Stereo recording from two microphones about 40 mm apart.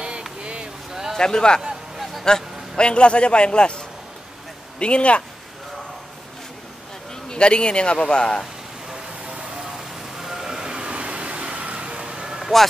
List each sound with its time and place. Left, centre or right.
0.4 s a sound: right
1.1 s speech: centre
2.2 s a sound: centre
2.9 s speech: left
7.2 s speech: left
9.6 s vehicle: centre
12.4 s vehicle: centre